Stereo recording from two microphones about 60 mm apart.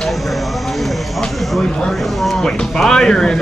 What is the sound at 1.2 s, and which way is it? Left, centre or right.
Speech, centre.